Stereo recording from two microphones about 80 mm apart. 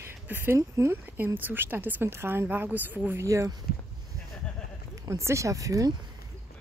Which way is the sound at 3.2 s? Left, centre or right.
Right.